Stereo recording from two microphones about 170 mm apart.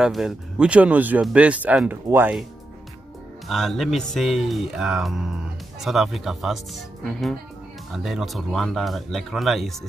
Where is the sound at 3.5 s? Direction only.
Centre (ahead or behind).